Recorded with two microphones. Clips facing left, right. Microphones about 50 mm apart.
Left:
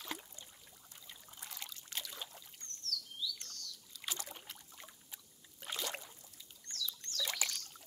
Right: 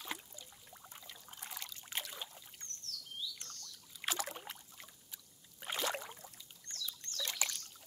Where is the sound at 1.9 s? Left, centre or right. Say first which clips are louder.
Right 3 dB; centre.